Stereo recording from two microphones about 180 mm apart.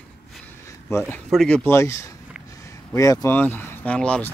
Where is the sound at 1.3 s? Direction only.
Centre (ahead or behind).